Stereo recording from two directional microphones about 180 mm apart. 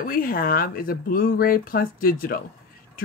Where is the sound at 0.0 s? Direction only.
50° left (ahead or behind).